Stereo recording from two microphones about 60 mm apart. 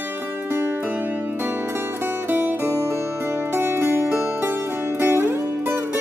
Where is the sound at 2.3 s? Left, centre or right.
Right.